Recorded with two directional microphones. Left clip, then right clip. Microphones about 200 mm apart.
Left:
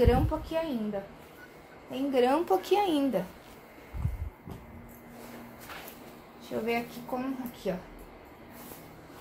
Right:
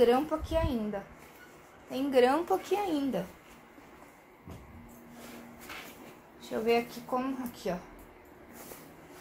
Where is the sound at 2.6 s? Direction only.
25° left (ahead or behind).